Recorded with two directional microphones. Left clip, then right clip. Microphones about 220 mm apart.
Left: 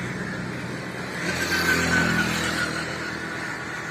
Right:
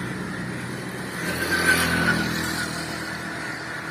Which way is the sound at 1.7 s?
15° right (ahead or behind).